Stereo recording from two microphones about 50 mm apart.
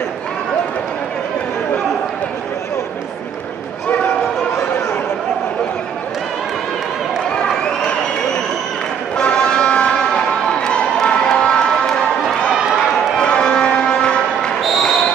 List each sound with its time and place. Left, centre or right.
7.3 s crowd: centre
9.1 s a sound: centre
13.2 s cattle: centre
14.6 s basketball bounce: centre